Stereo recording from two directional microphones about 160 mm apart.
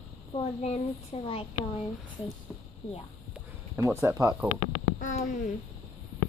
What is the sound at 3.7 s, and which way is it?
Speech, 15° right (ahead or behind).